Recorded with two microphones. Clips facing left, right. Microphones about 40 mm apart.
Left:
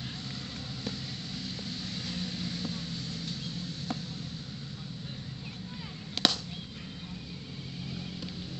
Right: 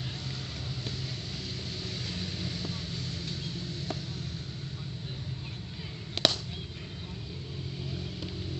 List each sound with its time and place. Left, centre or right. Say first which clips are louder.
2.0 s vehicle: left 1 dB; right
6.2 s chop: right 1 dB; centre